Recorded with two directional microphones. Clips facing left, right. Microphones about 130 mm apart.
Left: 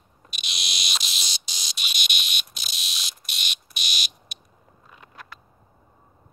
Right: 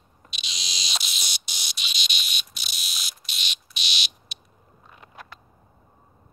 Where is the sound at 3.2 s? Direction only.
50° left (ahead or behind).